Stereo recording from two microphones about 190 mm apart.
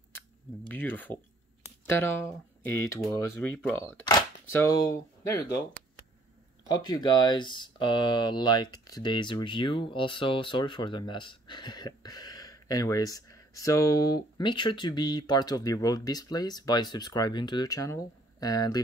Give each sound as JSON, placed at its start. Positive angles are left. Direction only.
{"t": 0.7, "sound": "speech", "side_deg": 10}